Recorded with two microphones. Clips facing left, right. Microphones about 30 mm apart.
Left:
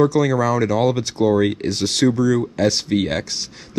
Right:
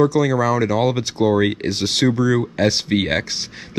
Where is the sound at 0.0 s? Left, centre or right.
Centre.